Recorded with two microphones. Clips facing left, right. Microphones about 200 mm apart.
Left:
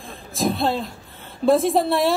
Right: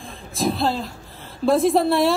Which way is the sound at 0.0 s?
Centre (ahead or behind).